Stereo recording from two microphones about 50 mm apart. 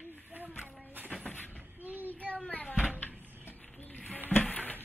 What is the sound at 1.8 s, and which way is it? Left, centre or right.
Child singing, right.